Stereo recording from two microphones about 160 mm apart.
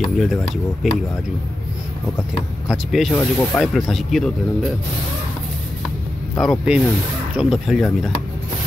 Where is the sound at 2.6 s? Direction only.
Centre (ahead or behind).